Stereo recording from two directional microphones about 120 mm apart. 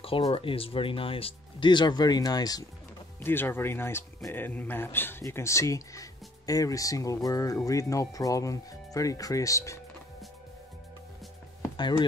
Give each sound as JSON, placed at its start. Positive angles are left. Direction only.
{"t": 0.3, "sound": "speech", "side_deg": 50}
{"t": 3.2, "sound": "speech", "side_deg": 20}